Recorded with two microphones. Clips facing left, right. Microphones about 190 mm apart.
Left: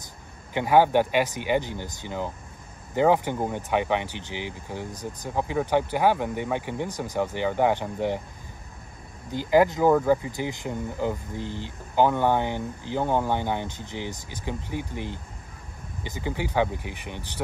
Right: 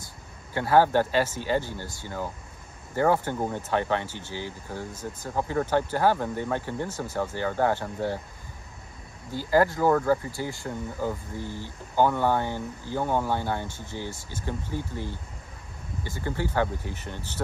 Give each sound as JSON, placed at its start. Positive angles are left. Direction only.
{"t": 0.5, "sound": "speech", "side_deg": 15}
{"t": 9.3, "sound": "speech", "side_deg": 15}